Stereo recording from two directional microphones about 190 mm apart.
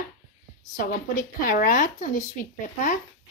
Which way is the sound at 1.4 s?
45° left (ahead or behind).